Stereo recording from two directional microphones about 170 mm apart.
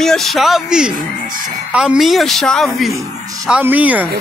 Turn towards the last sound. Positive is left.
turn(degrees=-10)  # may be behind; listen again after turning